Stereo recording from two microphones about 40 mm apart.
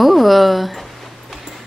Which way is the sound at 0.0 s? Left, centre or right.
Centre.